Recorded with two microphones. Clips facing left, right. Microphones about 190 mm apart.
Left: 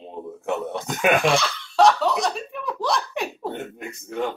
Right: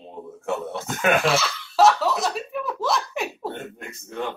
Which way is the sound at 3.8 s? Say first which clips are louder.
Left 4 dB; 5° left (ahead or behind).